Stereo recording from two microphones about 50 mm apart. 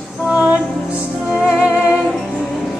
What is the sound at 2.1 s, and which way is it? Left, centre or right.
Music, centre.